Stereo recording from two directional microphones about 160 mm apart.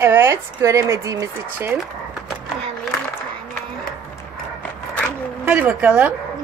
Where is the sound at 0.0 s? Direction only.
15° right (ahead or behind).